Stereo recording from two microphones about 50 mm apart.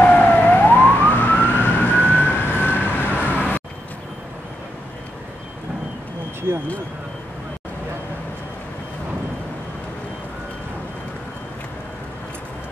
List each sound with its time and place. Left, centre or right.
0.0 s emergency vehicle: left